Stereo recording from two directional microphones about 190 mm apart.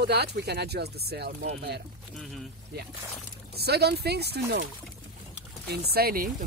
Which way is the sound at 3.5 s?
60° right (ahead or behind).